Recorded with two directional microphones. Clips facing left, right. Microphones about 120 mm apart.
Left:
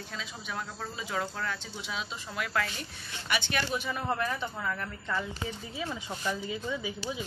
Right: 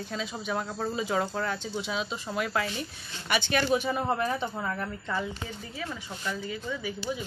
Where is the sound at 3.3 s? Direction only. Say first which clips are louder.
Right 6 dB; 35° right (ahead or behind).